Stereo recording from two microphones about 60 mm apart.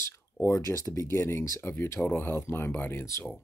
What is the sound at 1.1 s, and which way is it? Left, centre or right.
Speech, left.